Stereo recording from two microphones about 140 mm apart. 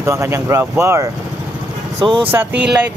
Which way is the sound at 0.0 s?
20° right (ahead or behind).